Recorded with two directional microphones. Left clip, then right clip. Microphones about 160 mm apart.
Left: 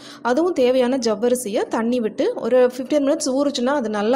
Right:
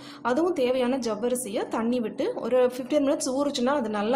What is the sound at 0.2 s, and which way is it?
A woman's voice, 25° left (ahead or behind).